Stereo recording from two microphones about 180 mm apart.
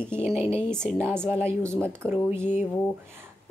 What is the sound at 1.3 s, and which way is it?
Speech, 15° right (ahead or behind).